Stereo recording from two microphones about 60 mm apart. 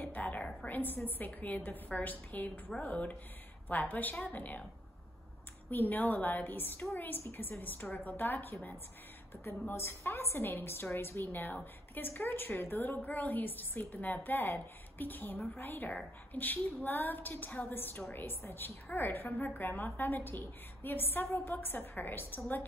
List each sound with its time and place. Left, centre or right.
0.0 s a sound: left
0.7 s a woman's voice: left
5.7 s a woman's voice: left
9.7 s a woman's voice: left